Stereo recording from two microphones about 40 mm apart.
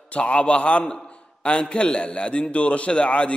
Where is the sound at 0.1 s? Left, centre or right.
Left.